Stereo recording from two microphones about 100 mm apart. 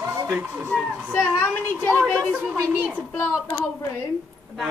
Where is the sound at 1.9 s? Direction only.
10° left (ahead or behind).